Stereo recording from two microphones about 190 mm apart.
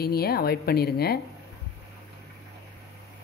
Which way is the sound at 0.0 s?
55° left (ahead or behind).